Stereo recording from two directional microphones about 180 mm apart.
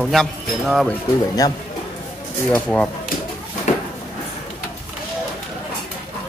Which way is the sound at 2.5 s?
10° left (ahead or behind).